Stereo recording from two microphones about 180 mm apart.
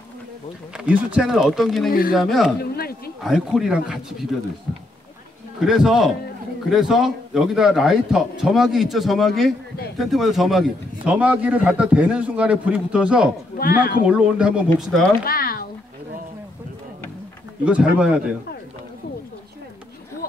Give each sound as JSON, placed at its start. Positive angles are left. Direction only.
{"t": 0.7, "sound": "a man's voice", "side_deg": -5}
{"t": 1.9, "sound": "speech", "side_deg": 55}
{"t": 2.1, "sound": "a man's voice", "side_deg": 0}
{"t": 2.6, "sound": "speech", "side_deg": 60}
{"t": 3.3, "sound": "a man's voice", "side_deg": 0}
{"t": 5.6, "sound": "a man's voice", "side_deg": 0}
{"t": 13.6, "sound": "speech", "side_deg": 55}
{"t": 14.0, "sound": "a man's voice", "side_deg": -5}
{"t": 15.2, "sound": "a sound", "side_deg": 55}
{"t": 17.6, "sound": "a man's voice", "side_deg": -5}